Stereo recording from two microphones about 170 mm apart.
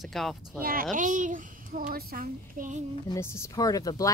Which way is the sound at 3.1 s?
15° left (ahead or behind).